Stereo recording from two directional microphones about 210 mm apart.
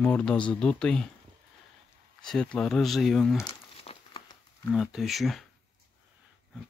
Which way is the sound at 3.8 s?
25° left (ahead or behind).